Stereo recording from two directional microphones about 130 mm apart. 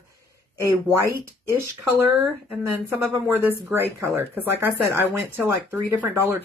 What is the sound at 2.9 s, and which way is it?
Speech, 15° right (ahead or behind).